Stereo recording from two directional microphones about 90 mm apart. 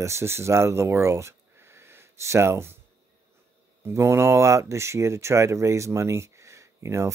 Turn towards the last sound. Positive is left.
turn(degrees=-35)  # may be behind; listen again after turning